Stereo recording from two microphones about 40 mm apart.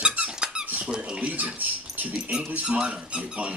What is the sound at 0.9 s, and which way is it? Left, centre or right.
Speech, centre.